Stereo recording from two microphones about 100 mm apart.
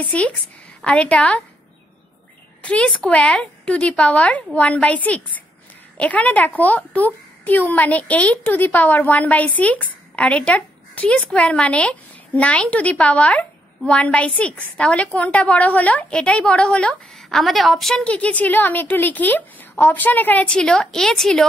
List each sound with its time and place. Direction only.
0.0 s a woman's voice: 15° left (ahead or behind)
2.6 s a woman's voice: 10° left (ahead or behind)